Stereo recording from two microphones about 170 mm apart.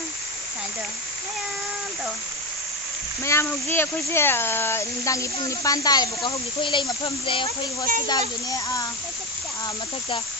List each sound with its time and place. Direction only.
3.3 s speech: 15° left (ahead or behind)